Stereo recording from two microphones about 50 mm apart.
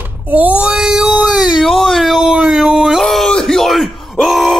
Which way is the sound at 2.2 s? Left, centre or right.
Centre.